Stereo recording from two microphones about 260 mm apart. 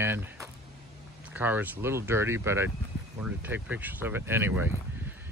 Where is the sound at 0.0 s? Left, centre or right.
Centre.